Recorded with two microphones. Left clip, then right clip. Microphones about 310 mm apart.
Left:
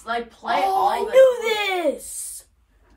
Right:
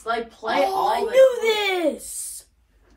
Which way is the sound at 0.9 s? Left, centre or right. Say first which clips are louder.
Even; left.